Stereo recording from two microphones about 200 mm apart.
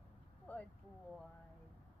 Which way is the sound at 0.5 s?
10° left (ahead or behind).